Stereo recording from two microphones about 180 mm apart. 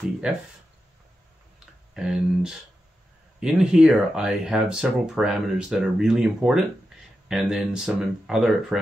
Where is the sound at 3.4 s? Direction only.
5° right (ahead or behind).